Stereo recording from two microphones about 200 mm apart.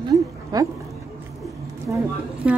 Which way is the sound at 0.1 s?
15° right (ahead or behind).